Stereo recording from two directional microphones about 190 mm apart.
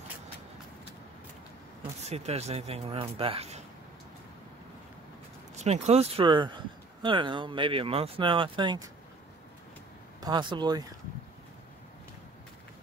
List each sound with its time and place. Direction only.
2.0 s speech: 35° right (ahead or behind)
5.6 s speech: 35° right (ahead or behind)
10.2 s speech: 25° right (ahead or behind)